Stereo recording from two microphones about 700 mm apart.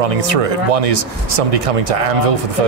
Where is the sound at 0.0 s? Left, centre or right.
Right.